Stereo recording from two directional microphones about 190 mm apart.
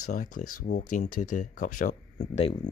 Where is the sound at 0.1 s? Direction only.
45° left (ahead or behind).